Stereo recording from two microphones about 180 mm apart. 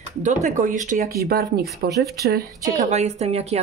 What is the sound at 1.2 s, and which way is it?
Speech, 55° right (ahead or behind).